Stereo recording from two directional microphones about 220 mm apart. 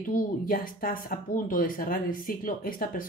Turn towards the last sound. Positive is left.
turn(degrees=40)  # may be behind; listen again after turning